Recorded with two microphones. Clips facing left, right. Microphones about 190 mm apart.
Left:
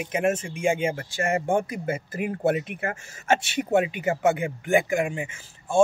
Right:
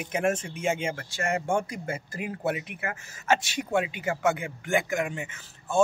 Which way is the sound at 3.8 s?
20° left (ahead or behind).